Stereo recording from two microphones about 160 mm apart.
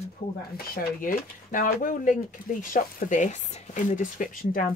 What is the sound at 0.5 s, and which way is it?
Speech, 65° left (ahead or behind).